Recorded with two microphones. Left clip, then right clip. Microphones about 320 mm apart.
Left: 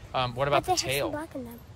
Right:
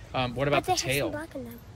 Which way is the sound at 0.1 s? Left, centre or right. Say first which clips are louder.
Left 1 dB; centre.